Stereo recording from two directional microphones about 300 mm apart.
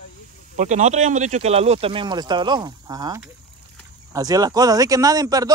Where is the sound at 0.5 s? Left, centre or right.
Right.